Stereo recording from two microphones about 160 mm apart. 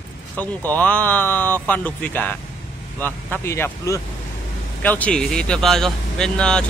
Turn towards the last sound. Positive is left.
turn(degrees=5)  # may be behind; listen again after turning